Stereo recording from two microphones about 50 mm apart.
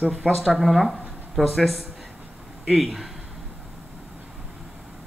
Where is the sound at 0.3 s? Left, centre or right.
Centre.